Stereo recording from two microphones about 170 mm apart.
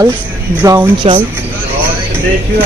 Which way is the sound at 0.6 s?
10° right (ahead or behind).